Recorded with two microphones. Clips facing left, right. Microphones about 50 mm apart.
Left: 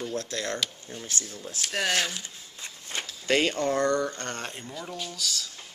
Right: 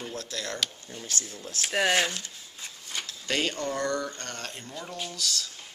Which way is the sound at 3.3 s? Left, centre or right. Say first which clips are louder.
Left 5 dB; left.